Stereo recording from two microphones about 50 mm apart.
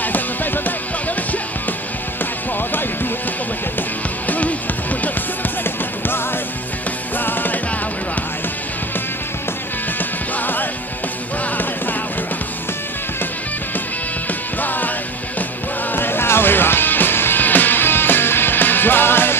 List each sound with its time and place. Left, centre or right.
4.3 s music: left
5.6 s music: left
10.4 s music: left
14.6 s music: left
15.9 s music: left